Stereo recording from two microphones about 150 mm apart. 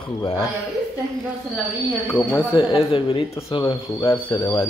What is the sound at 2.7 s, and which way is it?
Speech, 35° left (ahead or behind).